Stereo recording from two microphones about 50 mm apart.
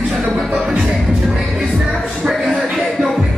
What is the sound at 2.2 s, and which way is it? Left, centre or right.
Music, centre.